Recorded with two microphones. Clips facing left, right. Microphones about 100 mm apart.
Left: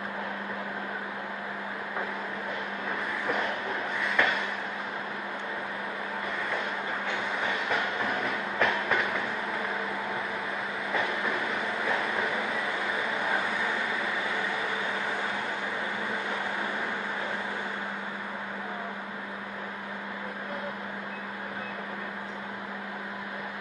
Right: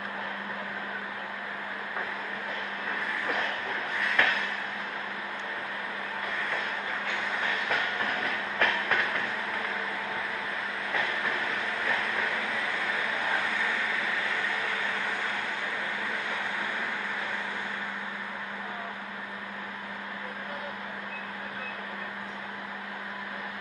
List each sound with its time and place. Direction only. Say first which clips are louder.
4.0 s a sound: even; 10° left (ahead or behind)
7.7 s train: left 1 dB; 10° left (ahead or behind)
10.9 s train: left 2 dB; 10° left (ahead or behind)
12.9 s vehicle: left 1 dB; 15° left (ahead or behind)